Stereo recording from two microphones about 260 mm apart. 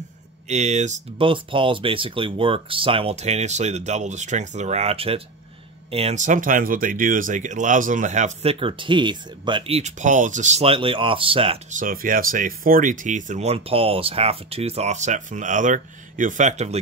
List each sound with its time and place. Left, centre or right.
0.5 s speech: right